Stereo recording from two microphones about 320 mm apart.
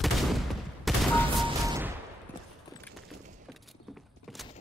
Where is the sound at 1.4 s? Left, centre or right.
Centre.